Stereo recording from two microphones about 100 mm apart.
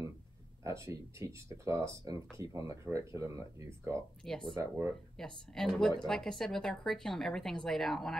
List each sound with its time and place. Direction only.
0.7 s speech: 30° right (ahead or behind)
4.2 s a woman's voice: 5° left (ahead or behind)